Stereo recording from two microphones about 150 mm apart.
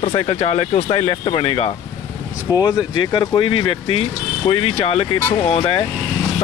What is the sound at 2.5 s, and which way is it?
Speech, 25° left (ahead or behind).